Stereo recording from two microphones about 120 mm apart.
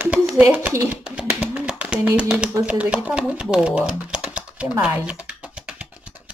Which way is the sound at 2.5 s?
10° right (ahead or behind).